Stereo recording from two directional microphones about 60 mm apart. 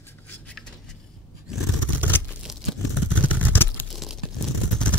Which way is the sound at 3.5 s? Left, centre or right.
Left.